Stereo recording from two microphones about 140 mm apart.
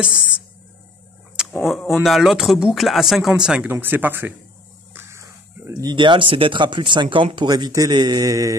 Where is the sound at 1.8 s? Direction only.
Centre (ahead or behind).